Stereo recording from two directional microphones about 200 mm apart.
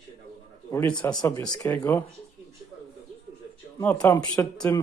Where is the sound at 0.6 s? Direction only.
10° left (ahead or behind).